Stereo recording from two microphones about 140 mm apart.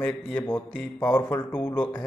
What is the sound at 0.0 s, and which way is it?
Speech, 15° left (ahead or behind).